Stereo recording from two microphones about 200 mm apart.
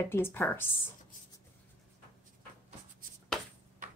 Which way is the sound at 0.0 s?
10° left (ahead or behind).